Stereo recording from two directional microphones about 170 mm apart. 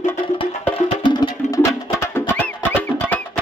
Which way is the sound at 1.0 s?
25° left (ahead or behind).